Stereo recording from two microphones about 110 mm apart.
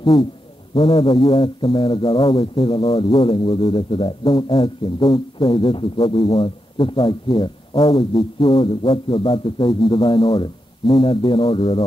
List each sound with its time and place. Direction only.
0.0 s a man's voice: 50° left (ahead or behind)